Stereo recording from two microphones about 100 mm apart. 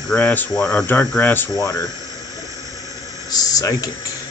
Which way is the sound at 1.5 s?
40° left (ahead or behind).